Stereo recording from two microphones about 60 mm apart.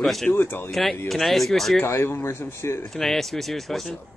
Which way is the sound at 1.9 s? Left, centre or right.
Left.